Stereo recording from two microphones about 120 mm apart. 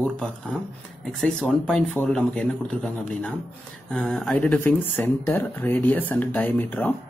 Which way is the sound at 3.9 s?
10° left (ahead or behind).